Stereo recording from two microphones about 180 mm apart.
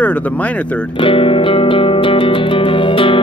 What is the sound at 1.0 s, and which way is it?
Music, 30° left (ahead or behind).